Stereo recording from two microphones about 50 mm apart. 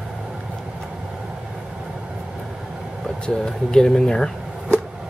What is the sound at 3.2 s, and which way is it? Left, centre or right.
Speech, centre.